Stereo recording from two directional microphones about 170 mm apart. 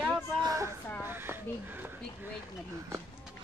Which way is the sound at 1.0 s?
10° right (ahead or behind).